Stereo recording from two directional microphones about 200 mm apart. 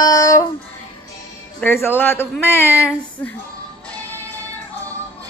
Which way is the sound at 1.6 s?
10° left (ahead or behind).